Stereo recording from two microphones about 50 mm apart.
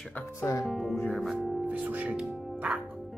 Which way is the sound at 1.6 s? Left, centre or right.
Right.